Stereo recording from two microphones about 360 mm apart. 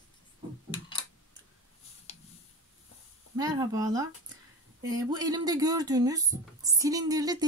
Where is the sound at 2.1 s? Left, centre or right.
Centre.